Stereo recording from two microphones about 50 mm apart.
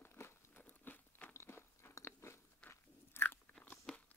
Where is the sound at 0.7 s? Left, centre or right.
Left.